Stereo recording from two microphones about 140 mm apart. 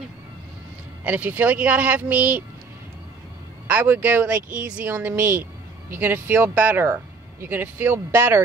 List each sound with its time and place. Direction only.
1.0 s speech: 10° right (ahead or behind)
3.6 s speech: 10° right (ahead or behind)